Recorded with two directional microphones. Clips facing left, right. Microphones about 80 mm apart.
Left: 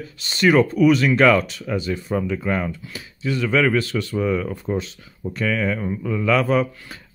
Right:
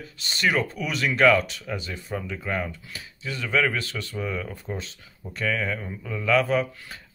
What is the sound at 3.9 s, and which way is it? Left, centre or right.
Speech, left.